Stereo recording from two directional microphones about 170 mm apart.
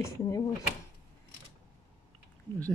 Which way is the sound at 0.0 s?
20° left (ahead or behind).